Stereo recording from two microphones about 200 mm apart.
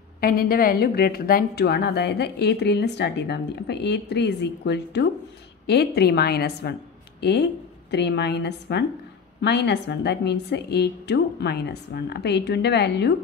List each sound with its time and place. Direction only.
0.2 s a woman's voice: 45° left (ahead or behind)